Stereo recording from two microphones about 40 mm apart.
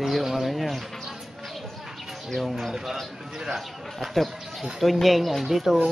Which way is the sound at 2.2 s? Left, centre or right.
Centre.